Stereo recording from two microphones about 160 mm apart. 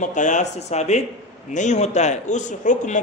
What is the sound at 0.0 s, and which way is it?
A man's voice, 50° left (ahead or behind).